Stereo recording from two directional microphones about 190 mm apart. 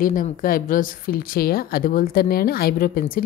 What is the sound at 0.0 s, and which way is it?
Speech, 45° left (ahead or behind).